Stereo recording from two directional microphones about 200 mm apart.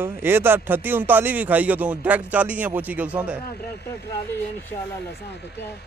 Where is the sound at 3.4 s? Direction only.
55° left (ahead or behind).